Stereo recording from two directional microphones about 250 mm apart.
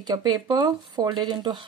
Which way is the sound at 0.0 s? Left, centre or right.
Centre.